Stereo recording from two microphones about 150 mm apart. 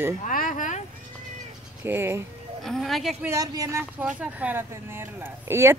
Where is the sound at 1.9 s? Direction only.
15° right (ahead or behind).